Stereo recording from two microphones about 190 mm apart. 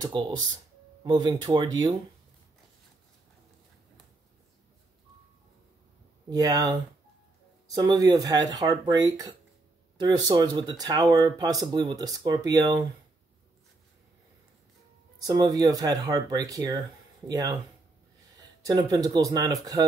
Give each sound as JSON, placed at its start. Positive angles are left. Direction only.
{"t": 0.0, "sound": "speech", "side_deg": -20}
{"t": 6.3, "sound": "speech", "side_deg": -20}
{"t": 15.1, "sound": "speech", "side_deg": -20}
{"t": 18.6, "sound": "speech", "side_deg": -20}